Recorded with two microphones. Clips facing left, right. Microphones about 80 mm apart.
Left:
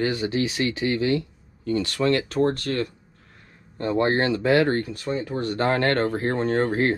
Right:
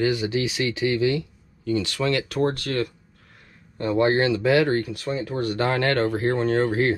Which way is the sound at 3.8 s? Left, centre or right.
Left.